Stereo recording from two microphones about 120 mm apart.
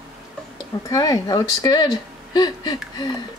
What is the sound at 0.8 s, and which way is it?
Speech, 30° left (ahead or behind).